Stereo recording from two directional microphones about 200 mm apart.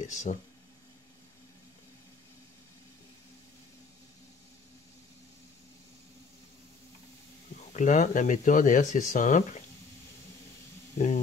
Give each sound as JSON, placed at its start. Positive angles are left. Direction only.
{"t": 0.0, "sound": "speech", "side_deg": 35}
{"t": 7.7, "sound": "speech", "side_deg": 40}